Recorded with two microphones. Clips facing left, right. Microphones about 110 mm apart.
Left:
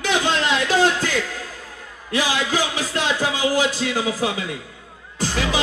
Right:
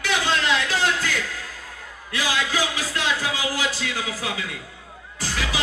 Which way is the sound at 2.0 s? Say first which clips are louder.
Left 4 dB; 25° left (ahead or behind).